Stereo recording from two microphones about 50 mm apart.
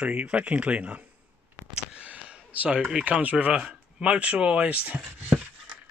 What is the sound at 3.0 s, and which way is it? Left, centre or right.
Speech, right.